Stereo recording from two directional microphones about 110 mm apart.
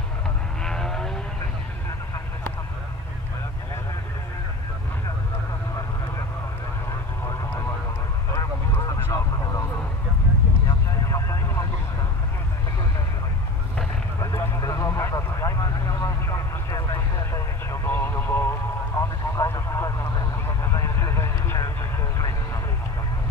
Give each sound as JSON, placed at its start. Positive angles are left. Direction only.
{"t": 0.7, "sound": "vehicle", "side_deg": 5}
{"t": 7.2, "sound": "vehicle", "side_deg": 25}
{"t": 8.3, "sound": "a sound", "side_deg": 30}
{"t": 11.1, "sound": "vehicle", "side_deg": 25}
{"t": 14.2, "sound": "vehicle", "side_deg": 30}